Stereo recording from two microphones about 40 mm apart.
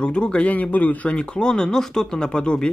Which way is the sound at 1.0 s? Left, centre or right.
Left.